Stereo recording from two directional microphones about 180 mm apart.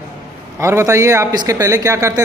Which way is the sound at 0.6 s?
15° right (ahead or behind).